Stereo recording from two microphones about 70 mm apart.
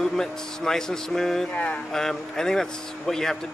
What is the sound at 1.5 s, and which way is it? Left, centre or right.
Speech, centre.